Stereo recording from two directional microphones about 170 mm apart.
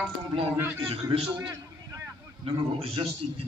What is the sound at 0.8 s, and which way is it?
Speech, 30° right (ahead or behind).